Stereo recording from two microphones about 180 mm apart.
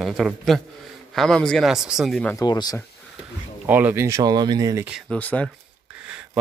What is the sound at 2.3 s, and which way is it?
Speech, 20° left (ahead or behind).